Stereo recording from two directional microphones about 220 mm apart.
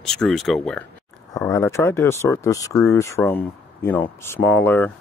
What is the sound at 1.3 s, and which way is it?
Speech, 15° left (ahead or behind).